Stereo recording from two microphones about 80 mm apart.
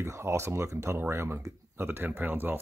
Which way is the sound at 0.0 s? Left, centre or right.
Right.